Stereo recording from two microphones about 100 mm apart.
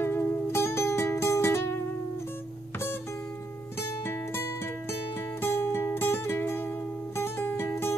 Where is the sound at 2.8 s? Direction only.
25° left (ahead or behind).